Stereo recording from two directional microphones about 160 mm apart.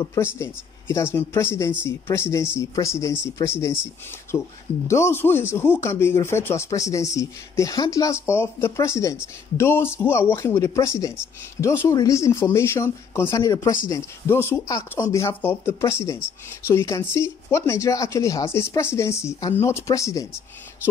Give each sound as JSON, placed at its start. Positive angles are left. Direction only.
{"t": 0.0, "sound": "speech", "side_deg": 20}